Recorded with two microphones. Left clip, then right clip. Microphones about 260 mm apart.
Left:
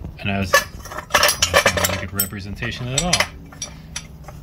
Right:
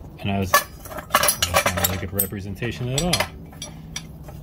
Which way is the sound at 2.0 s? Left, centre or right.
Centre.